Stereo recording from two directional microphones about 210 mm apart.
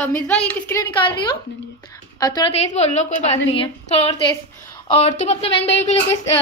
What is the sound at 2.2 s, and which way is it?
Speech, 20° left (ahead or behind).